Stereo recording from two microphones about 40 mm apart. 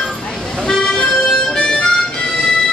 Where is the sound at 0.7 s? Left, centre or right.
Centre.